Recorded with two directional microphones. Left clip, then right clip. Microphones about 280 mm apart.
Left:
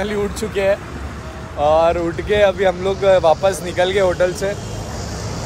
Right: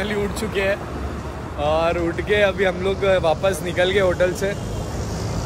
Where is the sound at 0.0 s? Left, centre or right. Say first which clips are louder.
Left 3 dB; centre.